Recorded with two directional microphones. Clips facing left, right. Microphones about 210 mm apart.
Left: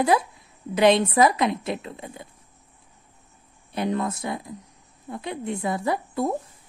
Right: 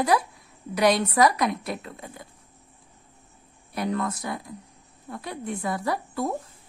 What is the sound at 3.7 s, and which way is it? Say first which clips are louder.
A woman's voice: left 2 dB; 25° left (ahead or behind).